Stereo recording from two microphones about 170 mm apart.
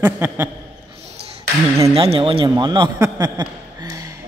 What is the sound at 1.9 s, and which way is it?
A man's voice, 30° right (ahead or behind).